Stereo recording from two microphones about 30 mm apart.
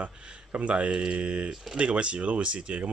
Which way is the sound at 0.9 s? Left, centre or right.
Right.